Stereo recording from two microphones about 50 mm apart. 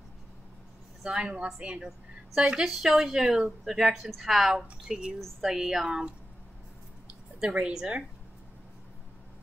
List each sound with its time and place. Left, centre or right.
1.0 s speech: centre
4.8 s speech: centre
7.3 s a woman's voice: right